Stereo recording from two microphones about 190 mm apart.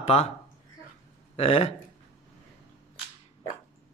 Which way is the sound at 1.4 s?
30° left (ahead or behind).